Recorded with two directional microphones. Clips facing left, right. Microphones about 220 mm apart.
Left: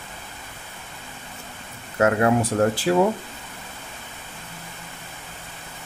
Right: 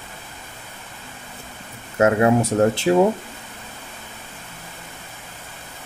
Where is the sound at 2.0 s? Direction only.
25° right (ahead or behind).